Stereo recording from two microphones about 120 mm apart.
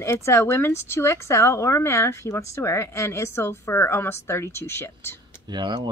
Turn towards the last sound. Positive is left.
turn(degrees=-40)  # may be behind; listen again after turning